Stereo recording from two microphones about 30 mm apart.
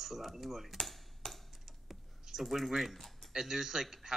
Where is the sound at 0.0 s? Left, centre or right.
Centre.